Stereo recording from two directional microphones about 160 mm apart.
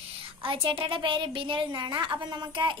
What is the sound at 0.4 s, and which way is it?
A woman's voice, 35° right (ahead or behind).